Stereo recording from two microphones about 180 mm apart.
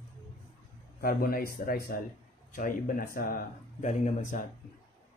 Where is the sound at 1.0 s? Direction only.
55° left (ahead or behind).